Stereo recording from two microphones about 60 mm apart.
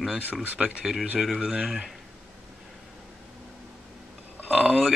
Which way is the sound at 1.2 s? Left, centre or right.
Centre.